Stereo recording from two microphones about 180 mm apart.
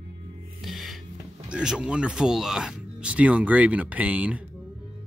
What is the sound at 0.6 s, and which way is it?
Music, centre (ahead or behind).